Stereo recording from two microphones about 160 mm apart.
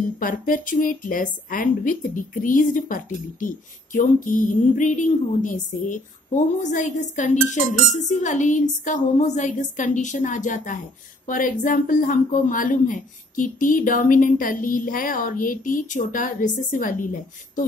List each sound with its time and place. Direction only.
0.2 s a woman's voice: 60° left (ahead or behind)